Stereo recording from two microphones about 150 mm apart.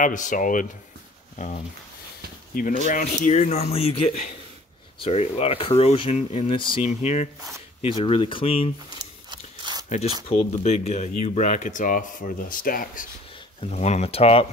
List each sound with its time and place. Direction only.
0.0 s speech: 55° left (ahead or behind)
2.5 s speech: 65° left (ahead or behind); by 6.9 s 35° left (ahead or behind)
6.9 s speech: 45° left (ahead or behind)
8.0 s speech: 35° left (ahead or behind)
9.3 s biting: 30° right (ahead or behind)
9.8 s speech: 45° left (ahead or behind); by 13.0 s 70° left (ahead or behind)
13.6 s speech: 45° left (ahead or behind)